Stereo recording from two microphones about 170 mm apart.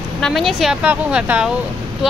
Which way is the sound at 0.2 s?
Centre (ahead or behind).